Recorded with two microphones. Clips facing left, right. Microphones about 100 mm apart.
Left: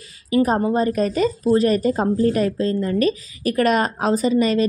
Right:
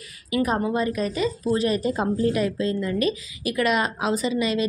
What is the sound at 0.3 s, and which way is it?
A woman's voice, 35° left (ahead or behind).